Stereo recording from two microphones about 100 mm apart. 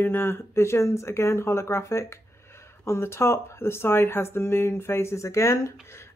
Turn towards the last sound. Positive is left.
turn(degrees=25)  # may be behind; listen again after turning